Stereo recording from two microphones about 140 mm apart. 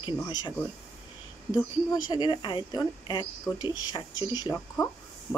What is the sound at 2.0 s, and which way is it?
Speech, 30° left (ahead or behind).